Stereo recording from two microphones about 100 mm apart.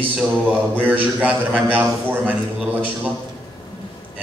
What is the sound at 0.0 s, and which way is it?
A man's voice, 15° right (ahead or behind).